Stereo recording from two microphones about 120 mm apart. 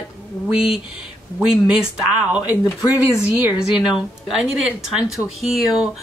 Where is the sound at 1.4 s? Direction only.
5° right (ahead or behind).